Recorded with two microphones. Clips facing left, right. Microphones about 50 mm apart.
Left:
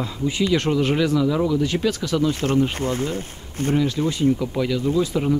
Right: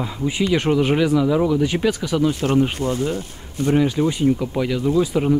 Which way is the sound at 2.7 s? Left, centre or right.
Left.